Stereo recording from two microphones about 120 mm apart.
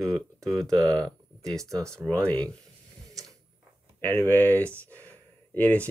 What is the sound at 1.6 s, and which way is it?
Speech, 25° right (ahead or behind).